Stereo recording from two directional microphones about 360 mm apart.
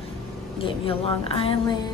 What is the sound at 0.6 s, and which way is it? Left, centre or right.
Speech, centre.